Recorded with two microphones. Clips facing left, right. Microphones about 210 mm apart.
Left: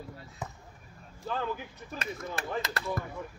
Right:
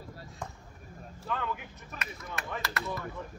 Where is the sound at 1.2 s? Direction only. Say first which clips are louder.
Left 2 dB; 35° left (ahead or behind).